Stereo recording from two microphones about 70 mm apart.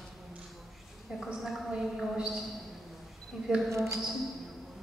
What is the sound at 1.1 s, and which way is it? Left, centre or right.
A woman's voice, centre.